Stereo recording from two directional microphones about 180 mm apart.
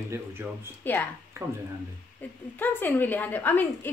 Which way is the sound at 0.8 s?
10° left (ahead or behind).